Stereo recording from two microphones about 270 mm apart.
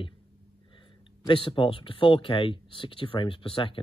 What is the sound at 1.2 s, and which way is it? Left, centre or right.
Speech, centre.